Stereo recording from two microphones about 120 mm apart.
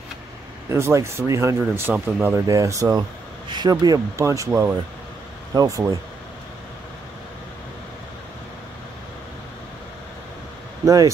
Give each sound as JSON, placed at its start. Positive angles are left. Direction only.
{"t": 0.7, "sound": "speech", "side_deg": -25}
{"t": 2.0, "sound": "speech", "side_deg": -10}
{"t": 2.3, "sound": "speech", "side_deg": -30}
{"t": 10.9, "sound": "speech", "side_deg": -30}